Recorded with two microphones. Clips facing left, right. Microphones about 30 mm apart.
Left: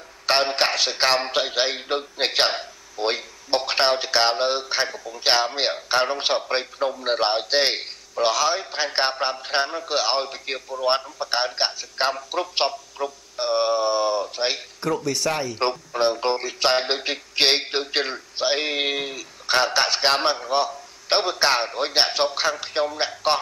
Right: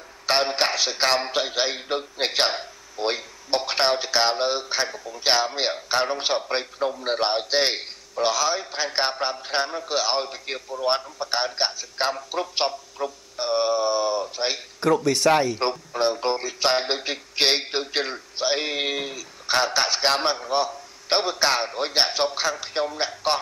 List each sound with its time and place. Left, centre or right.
0.3 s a man's voice: centre
0.7 s a man's voice: left
1.0 s a man's voice: centre
8.3 s a man's voice: left
14.8 s speech: centre
15.5 s a man's voice: centre